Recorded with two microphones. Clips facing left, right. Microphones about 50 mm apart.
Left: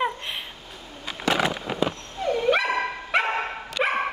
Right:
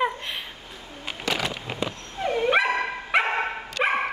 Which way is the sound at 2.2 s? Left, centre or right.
Right.